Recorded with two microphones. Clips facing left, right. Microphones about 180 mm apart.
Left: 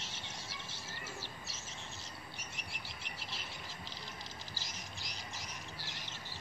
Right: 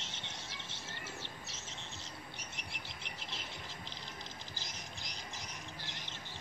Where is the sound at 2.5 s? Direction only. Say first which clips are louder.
Even; 20° right (ahead or behind).